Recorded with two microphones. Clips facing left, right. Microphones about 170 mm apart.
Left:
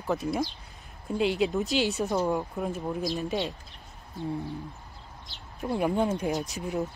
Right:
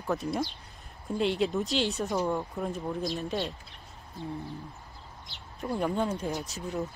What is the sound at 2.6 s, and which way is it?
Speech, 5° left (ahead or behind).